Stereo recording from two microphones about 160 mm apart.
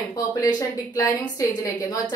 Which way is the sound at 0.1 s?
20° left (ahead or behind).